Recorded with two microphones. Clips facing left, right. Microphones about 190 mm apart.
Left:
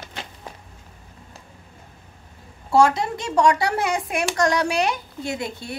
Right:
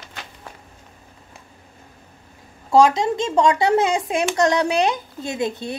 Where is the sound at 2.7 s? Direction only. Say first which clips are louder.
Right 3 dB; 20° right (ahead or behind).